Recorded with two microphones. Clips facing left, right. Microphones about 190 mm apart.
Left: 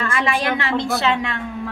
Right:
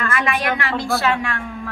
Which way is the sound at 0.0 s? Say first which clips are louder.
Even; 25° left (ahead or behind).